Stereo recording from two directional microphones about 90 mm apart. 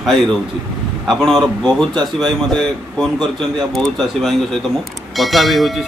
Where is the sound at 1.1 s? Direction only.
5° left (ahead or behind).